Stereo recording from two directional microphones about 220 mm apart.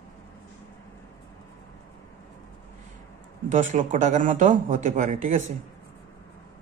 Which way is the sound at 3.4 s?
35° right (ahead or behind).